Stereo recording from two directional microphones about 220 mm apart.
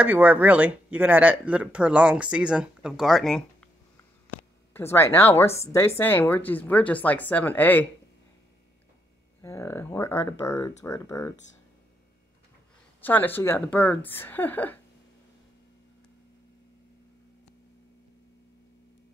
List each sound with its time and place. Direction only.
0.0 s speech: 10° right (ahead or behind); by 7.8 s 10° left (ahead or behind)
9.4 s a woman's voice: 10° left (ahead or behind)
13.0 s a woman's voice: 10° left (ahead or behind)